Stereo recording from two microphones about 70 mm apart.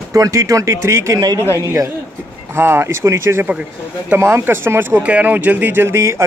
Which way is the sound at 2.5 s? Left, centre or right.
Right.